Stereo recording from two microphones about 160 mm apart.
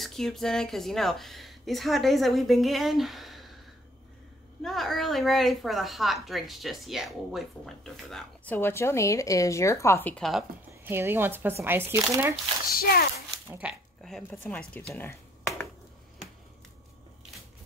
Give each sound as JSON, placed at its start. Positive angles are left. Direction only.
{"t": 0.0, "sound": "a woman's voice", "side_deg": 0}
{"t": 4.6, "sound": "a woman's voice", "side_deg": 0}
{"t": 10.7, "sound": "speech", "side_deg": -15}
{"t": 12.6, "sound": "speech", "side_deg": 70}
{"t": 13.5, "sound": "speech", "side_deg": -5}
{"t": 14.3, "sound": "speech", "side_deg": 10}